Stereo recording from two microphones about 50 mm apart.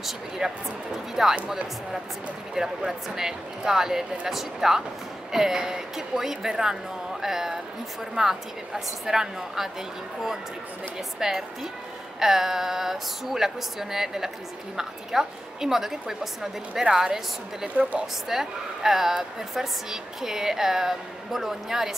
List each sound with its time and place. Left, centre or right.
0.4 s a woman's voice: centre
2.5 s a woman's voice: centre